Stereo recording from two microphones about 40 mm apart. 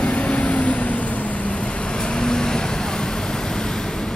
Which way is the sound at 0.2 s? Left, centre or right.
Left.